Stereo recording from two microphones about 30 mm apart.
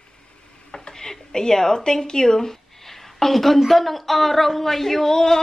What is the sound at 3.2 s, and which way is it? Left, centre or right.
A woman's voice, centre.